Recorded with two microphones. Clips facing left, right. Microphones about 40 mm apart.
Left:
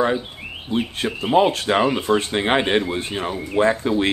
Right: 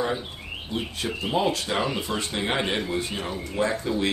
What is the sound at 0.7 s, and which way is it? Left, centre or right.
Speech, left.